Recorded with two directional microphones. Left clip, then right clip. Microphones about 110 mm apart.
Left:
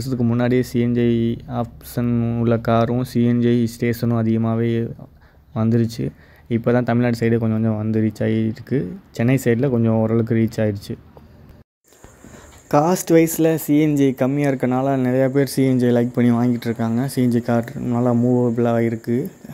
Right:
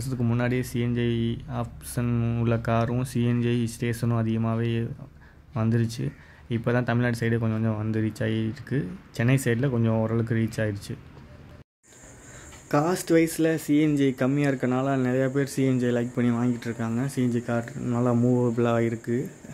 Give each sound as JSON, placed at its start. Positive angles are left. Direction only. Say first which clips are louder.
{"t": 0.4, "sound": "speech", "louder": "left 9 dB", "side_deg": 35}
{"t": 2.0, "sound": "speech", "louder": "left 8 dB", "side_deg": 15}
{"t": 2.4, "sound": "speech", "louder": "left 8 dB", "side_deg": 35}
{"t": 7.5, "sound": "speech", "louder": "left 7 dB", "side_deg": 15}
{"t": 7.9, "sound": "speech", "louder": "left 9 dB", "side_deg": 25}
{"t": 12.6, "sound": "speech", "louder": "left 7 dB", "side_deg": 35}
{"t": 17.8, "sound": "speech", "louder": "left 4 dB", "side_deg": 15}
{"t": 18.2, "sound": "speech", "louder": "left 5 dB", "side_deg": 5}
{"t": 18.5, "sound": "speech", "louder": "left 5 dB", "side_deg": 15}
{"t": 18.9, "sound": "speech", "louder": "left 6 dB", "side_deg": 30}